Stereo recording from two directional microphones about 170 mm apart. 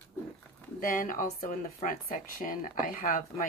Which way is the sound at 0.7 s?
50° left (ahead or behind).